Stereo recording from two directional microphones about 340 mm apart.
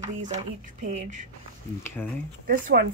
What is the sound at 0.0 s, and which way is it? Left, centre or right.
A woman's voice, centre.